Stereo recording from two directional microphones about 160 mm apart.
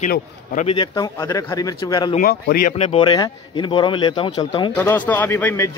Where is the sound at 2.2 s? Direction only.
70° left (ahead or behind).